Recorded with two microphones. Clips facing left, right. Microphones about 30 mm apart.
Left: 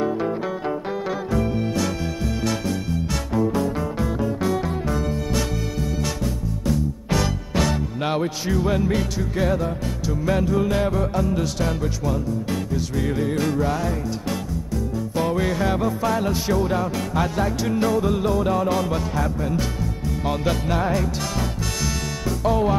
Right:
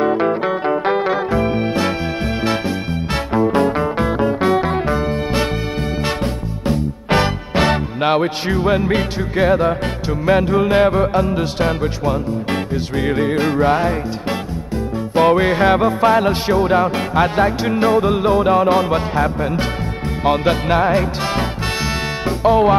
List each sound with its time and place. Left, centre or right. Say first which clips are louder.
0.0 s music: right 7 dB; right
3.3 s music: right 7 dB; right
6.7 s music: right 6 dB; right
15.1 s music: right 10 dB; right